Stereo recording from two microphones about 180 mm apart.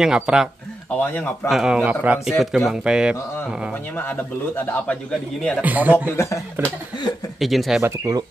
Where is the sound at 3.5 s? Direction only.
5° right (ahead or behind).